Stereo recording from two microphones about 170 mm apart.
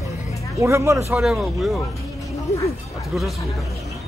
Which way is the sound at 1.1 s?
5° right (ahead or behind).